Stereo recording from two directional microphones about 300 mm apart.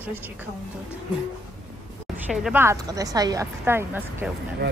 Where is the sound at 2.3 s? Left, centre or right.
Centre.